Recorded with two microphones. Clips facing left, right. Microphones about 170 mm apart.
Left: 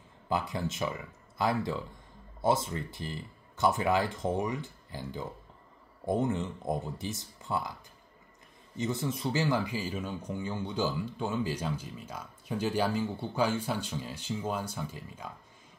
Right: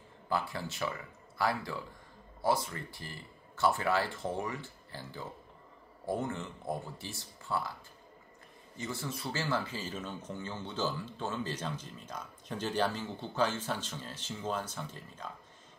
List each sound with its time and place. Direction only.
0.3 s speech: 20° left (ahead or behind)
8.7 s speech: 20° left (ahead or behind)